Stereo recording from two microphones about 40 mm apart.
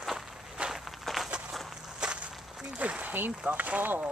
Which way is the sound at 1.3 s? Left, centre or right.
Right.